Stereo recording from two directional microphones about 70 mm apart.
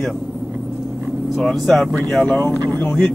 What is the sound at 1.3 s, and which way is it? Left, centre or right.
Speech, centre.